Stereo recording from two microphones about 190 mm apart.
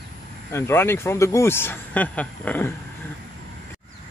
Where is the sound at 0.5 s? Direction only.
15° left (ahead or behind).